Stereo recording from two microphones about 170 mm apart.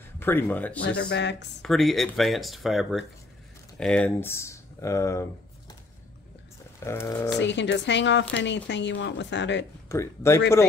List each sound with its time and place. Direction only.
0.2 s speech: 10° left (ahead or behind)
0.8 s speech: 90° left
1.6 s speech: centre (ahead or behind); by 5.2 s 15° left (ahead or behind)
6.8 s speech: 15° left (ahead or behind)
7.4 s speech: 90° left
9.8 s speech: 15° left (ahead or behind)